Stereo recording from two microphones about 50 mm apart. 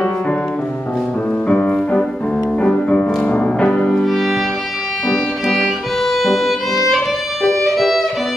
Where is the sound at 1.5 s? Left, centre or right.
Left.